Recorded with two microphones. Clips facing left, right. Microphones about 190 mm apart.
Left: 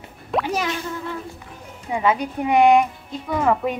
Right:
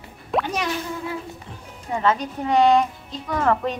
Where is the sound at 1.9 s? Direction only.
10° left (ahead or behind).